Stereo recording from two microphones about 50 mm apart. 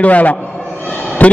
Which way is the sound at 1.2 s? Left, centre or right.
Left.